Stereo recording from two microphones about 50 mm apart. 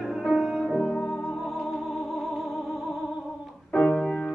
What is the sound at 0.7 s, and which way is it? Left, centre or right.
Music, centre.